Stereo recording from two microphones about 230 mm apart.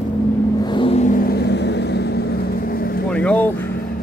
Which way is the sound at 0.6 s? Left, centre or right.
Left.